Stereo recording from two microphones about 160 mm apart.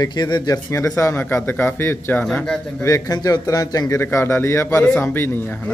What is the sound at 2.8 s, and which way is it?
A man's voice, 20° left (ahead or behind).